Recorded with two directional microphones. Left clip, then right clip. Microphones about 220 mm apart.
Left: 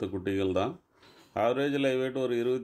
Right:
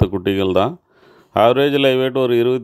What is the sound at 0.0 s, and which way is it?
Speech, 35° right (ahead or behind).